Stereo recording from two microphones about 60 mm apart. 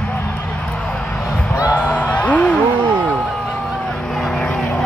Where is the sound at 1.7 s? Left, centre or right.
Left.